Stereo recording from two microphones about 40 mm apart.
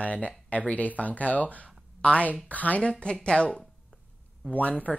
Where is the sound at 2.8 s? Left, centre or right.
Left.